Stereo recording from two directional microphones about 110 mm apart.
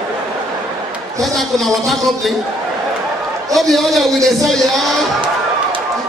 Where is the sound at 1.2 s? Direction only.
Centre (ahead or behind).